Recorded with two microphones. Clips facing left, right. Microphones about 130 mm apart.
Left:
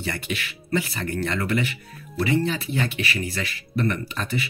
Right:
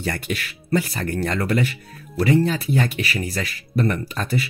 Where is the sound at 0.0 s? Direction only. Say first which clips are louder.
Right 3 dB; 45° right (ahead or behind).